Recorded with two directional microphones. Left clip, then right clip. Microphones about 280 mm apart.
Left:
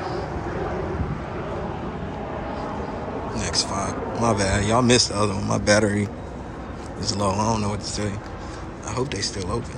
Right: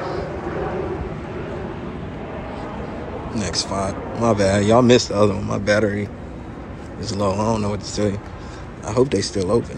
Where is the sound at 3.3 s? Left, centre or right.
Centre.